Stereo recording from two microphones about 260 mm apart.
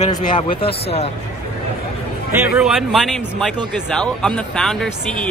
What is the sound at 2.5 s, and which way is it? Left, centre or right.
Speech, centre.